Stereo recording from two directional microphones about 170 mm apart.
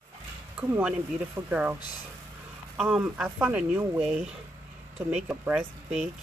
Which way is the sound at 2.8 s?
5° right (ahead or behind).